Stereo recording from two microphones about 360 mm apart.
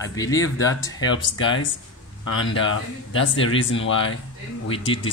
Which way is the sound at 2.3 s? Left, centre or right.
Left.